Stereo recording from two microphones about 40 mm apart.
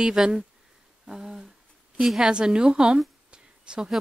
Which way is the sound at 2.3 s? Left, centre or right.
Right.